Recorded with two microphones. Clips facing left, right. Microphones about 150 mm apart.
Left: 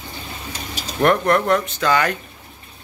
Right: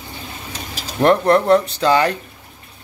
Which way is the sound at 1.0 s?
30° right (ahead or behind).